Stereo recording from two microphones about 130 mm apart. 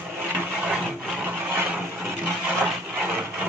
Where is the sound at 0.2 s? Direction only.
10° right (ahead or behind).